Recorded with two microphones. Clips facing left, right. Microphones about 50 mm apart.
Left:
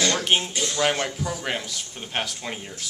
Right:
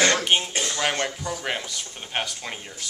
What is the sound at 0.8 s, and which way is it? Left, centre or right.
A man's voice, centre.